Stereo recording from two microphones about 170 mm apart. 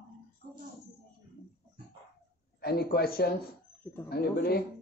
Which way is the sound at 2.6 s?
65° left (ahead or behind).